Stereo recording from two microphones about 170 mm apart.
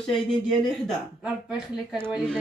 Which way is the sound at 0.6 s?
Centre (ahead or behind).